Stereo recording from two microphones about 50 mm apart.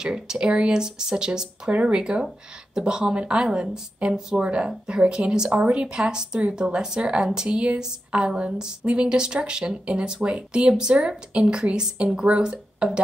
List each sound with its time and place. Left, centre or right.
0.0 s speech: centre